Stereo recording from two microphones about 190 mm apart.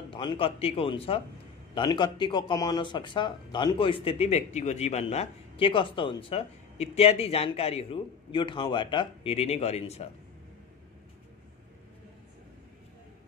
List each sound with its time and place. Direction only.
0.1 s a man's voice: 25° left (ahead or behind)